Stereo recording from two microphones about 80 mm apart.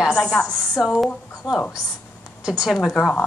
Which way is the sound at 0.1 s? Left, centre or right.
Centre.